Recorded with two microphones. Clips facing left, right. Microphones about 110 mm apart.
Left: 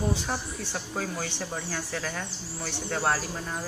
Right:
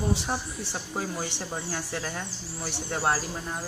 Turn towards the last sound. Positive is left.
turn(degrees=-15)  # may be behind; listen again after turning